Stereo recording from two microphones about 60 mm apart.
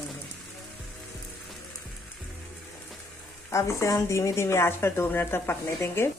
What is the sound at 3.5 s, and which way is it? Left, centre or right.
Speech, left.